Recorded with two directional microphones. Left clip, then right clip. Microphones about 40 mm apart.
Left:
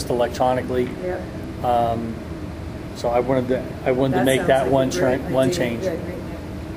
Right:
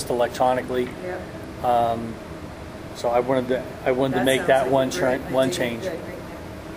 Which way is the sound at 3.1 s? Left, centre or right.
Right.